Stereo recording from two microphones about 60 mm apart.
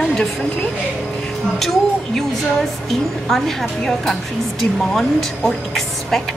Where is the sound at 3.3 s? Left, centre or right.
Centre.